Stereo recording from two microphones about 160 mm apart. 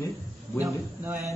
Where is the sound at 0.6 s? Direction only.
15° right (ahead or behind).